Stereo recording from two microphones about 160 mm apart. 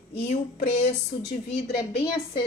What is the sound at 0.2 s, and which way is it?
A woman's voice, 45° left (ahead or behind).